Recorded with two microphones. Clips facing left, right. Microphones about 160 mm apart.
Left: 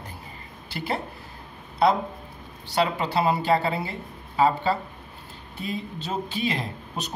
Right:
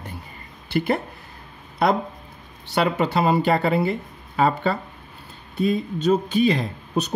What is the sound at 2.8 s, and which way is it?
Speech, 70° right (ahead or behind).